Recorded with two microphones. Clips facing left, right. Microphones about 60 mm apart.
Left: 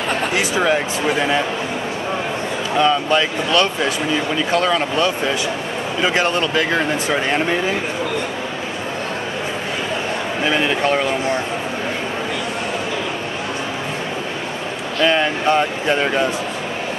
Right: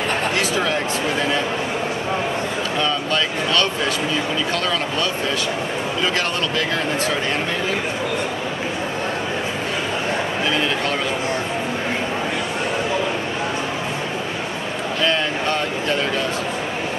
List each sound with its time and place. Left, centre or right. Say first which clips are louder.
0.4 s speech: left 3 dB; centre
2.8 s speech: left 7 dB; centre
15.0 s speech: left 5 dB; centre